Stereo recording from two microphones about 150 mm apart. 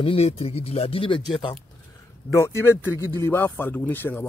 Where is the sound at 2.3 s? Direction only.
20° left (ahead or behind).